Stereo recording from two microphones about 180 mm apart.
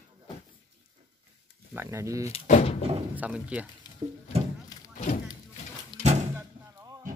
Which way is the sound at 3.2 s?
5° right (ahead or behind).